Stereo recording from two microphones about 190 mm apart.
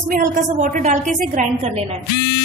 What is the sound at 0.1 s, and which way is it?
A woman's voice, 45° right (ahead or behind).